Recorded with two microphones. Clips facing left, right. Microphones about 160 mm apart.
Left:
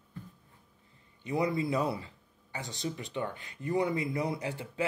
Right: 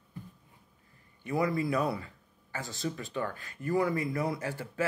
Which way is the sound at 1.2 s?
20° left (ahead or behind).